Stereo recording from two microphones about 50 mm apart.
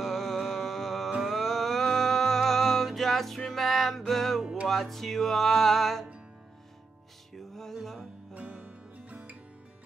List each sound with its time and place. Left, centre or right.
0.0 s music: centre
7.3 s music: centre
8.4 s music: right